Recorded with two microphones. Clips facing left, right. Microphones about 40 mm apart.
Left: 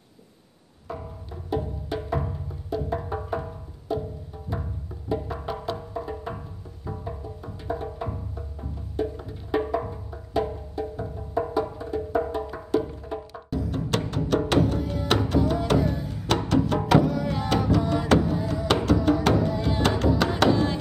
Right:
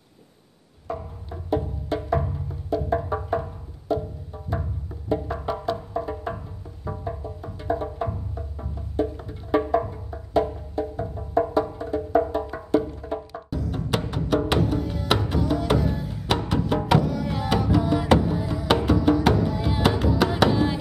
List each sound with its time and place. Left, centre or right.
0.9 s music: centre
5.3 s music: centre
6.9 s music: right
7.4 s music: centre
10.8 s music: centre
11.3 s music: centre
13.8 s music: centre
15.3 s music: centre
17.6 s music: centre
19.3 s music: centre